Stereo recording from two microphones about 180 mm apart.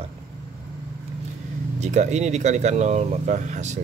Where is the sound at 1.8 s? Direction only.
40° right (ahead or behind).